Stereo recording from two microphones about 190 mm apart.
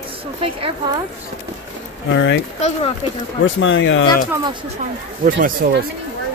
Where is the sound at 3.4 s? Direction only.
75° left (ahead or behind).